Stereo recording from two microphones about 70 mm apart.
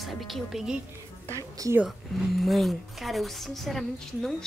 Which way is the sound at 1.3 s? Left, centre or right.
Right.